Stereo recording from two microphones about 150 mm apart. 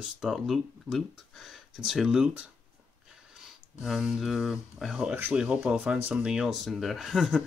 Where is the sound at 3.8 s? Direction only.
5° right (ahead or behind).